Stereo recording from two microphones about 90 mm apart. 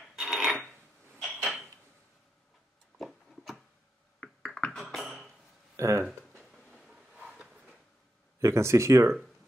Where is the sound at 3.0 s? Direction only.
Centre (ahead or behind).